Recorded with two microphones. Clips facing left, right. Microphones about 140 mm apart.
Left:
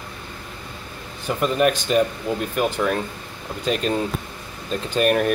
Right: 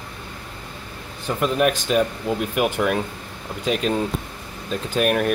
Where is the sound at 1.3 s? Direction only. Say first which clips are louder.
Left 1 dB; centre (ahead or behind).